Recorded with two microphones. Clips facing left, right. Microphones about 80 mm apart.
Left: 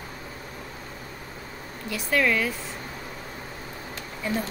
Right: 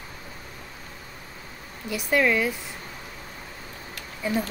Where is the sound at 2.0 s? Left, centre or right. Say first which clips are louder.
Right 2 dB; centre.